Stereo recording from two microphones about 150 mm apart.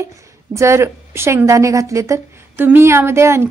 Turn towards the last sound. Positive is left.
turn(degrees=-15)  # may be behind; listen again after turning